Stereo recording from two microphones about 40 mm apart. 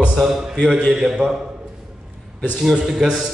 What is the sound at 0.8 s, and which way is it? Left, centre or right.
Speech, centre.